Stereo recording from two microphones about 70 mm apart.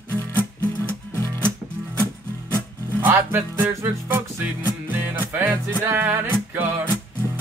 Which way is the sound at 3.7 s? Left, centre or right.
Right.